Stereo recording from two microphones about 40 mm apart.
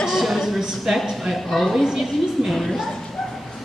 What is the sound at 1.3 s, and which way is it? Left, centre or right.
A woman's voice, centre.